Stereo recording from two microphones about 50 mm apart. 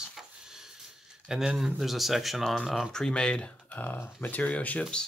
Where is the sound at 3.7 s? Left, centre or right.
Left.